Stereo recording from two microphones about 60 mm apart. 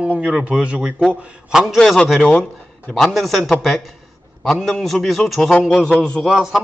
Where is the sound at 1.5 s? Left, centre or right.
Centre.